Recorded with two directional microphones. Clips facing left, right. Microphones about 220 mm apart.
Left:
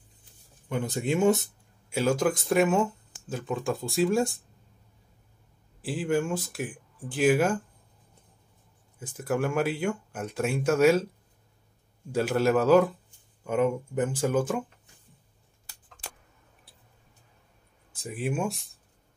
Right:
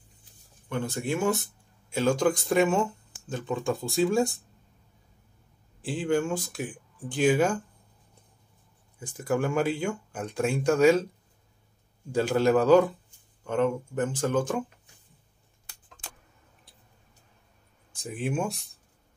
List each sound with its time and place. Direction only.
0.7 s speech: 15° left (ahead or behind)
1.9 s speech: 10° left (ahead or behind)
5.8 s speech: 5° left (ahead or behind)
9.0 s speech: 5° left (ahead or behind)
12.1 s speech: 5° left (ahead or behind)
18.0 s speech: centre (ahead or behind)